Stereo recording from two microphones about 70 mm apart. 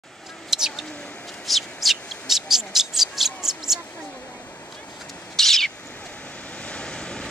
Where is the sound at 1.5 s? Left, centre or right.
Centre.